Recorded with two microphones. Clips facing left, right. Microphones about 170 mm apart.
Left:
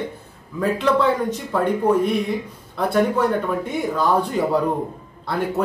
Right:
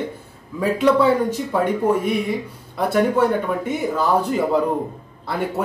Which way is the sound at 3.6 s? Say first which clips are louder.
Even; 5° right (ahead or behind).